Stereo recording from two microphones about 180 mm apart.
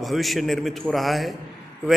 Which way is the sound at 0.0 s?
Centre (ahead or behind).